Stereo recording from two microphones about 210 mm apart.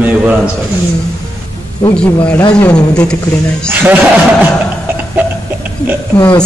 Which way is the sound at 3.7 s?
10° right (ahead or behind).